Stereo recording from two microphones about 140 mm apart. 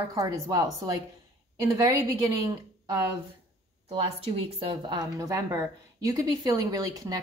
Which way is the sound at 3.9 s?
40° right (ahead or behind).